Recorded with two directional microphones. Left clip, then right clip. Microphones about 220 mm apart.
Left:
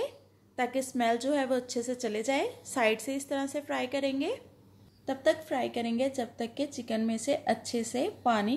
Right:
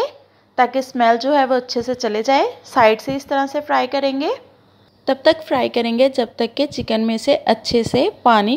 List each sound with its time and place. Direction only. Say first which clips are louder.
0.6 s a woman's voice: right 14 dB; 10° right (ahead or behind)
5.0 s a woman's voice: right 13 dB; 30° right (ahead or behind)